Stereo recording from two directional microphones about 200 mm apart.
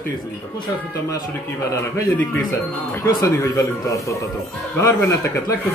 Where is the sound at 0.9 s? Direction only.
15° left (ahead or behind).